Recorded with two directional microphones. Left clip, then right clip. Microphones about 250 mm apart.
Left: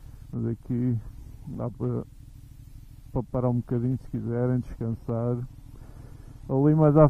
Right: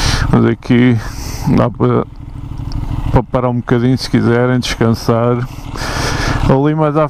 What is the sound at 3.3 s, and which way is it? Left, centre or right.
Speech, centre.